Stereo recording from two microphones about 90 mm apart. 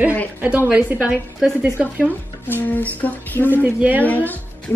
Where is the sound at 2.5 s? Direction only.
20° left (ahead or behind).